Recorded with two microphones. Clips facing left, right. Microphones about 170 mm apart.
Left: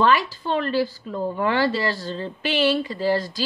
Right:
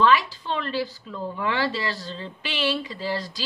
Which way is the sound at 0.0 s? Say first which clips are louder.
Left 1 dB; 50° left (ahead or behind).